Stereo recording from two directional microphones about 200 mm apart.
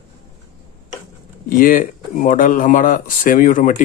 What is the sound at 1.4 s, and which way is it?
Speech, 45° left (ahead or behind).